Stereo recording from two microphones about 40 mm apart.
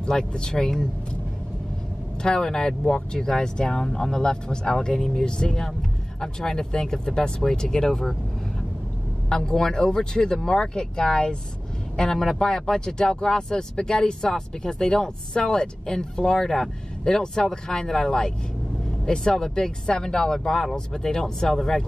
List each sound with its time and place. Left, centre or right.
0.0 s speech: left
2.2 s speech: centre
9.3 s speech: centre